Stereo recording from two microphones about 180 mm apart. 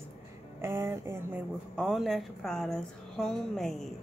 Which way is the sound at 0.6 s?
15° right (ahead or behind).